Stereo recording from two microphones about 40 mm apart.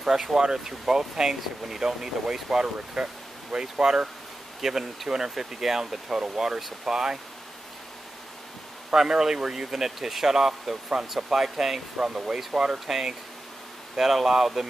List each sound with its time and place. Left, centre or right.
0.0 s speech: centre
4.6 s speech: centre
8.9 s speech: centre